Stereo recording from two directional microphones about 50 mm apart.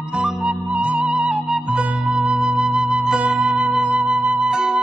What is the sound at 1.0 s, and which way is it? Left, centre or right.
Music, centre.